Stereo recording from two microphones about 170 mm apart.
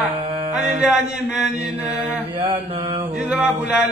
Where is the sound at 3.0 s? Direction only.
10° right (ahead or behind).